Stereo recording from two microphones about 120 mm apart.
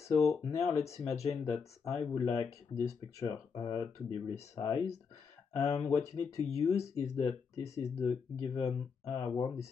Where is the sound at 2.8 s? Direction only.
25° left (ahead or behind).